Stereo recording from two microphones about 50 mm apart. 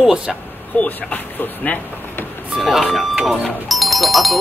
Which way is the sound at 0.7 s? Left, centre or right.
Left.